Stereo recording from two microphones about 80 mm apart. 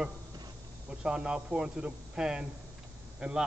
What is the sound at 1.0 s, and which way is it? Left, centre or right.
A man's voice, centre.